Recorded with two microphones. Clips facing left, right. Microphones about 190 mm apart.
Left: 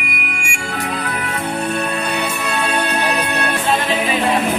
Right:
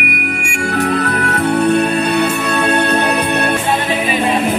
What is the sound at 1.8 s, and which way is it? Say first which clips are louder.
Music: right 7 dB; 30° right (ahead or behind).